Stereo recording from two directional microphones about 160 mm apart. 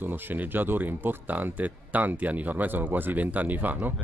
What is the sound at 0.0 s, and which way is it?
Speech, 10° right (ahead or behind).